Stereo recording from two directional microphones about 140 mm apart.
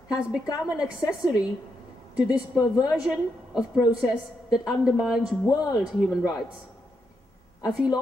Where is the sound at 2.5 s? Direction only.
25° left (ahead or behind).